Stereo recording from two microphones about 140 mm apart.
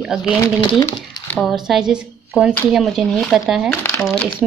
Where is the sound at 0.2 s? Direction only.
30° left (ahead or behind).